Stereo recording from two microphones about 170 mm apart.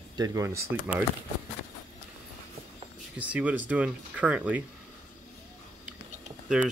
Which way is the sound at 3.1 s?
10° right (ahead or behind).